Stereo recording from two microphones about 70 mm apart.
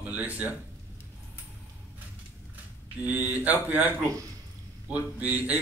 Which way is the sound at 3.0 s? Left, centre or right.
Right.